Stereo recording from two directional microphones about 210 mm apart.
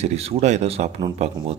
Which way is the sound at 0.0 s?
30° right (ahead or behind).